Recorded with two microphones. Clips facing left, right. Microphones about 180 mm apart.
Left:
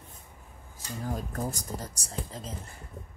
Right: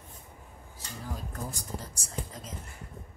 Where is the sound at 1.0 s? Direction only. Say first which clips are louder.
Left 6 dB; 45° left (ahead or behind).